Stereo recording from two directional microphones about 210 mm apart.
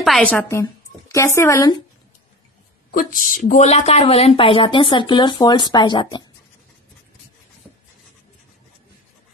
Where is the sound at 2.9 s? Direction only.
40° left (ahead or behind); by 6.2 s 20° left (ahead or behind).